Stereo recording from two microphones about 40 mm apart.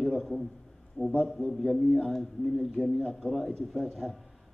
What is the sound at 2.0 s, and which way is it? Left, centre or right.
Speech, centre.